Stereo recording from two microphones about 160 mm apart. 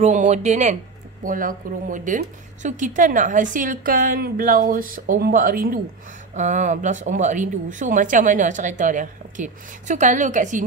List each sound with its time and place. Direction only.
0.0 s speech: 45° right (ahead or behind)
1.2 s a woman's voice: 60° right (ahead or behind)
6.3 s speech: 50° right (ahead or behind)